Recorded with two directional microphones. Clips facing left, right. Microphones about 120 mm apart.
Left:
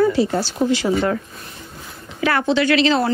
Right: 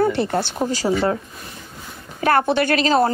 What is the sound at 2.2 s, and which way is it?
Speech, 45° right (ahead or behind).